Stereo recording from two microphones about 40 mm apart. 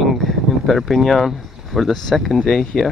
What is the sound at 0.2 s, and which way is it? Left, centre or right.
Speech, centre.